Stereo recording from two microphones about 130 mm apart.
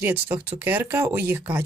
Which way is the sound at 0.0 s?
15° right (ahead or behind).